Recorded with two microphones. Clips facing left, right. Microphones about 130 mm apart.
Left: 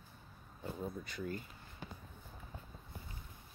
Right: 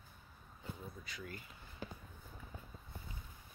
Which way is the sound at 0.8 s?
50° left (ahead or behind).